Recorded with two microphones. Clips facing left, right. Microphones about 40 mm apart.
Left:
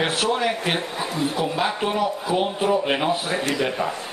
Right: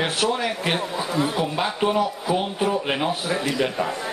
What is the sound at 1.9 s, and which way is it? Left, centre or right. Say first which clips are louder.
Speech: right 1 dB; centre.